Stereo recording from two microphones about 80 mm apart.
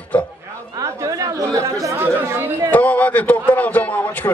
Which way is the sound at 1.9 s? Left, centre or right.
Right.